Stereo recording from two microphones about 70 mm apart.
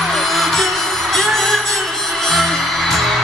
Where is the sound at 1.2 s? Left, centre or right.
Centre.